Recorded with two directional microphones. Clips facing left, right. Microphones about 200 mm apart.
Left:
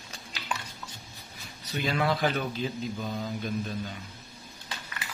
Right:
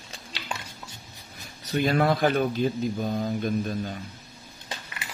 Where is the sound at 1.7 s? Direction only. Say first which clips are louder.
Right 5 dB; 50° right (ahead or behind).